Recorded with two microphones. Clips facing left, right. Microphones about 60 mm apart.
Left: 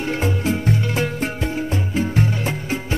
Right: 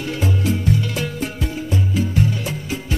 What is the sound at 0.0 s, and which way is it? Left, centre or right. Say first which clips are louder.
Music: left 1 dB; left.